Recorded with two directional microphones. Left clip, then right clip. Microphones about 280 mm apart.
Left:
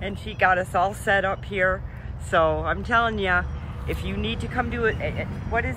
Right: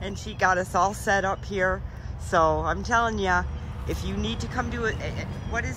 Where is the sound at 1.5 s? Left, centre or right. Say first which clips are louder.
Left 3 dB; right.